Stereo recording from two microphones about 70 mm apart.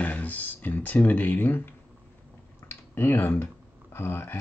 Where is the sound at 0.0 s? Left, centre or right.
Left.